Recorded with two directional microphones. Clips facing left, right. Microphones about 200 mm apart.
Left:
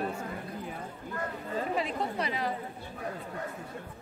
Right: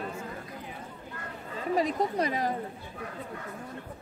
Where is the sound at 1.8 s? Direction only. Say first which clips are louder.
Right 5 dB; 40° right (ahead or behind).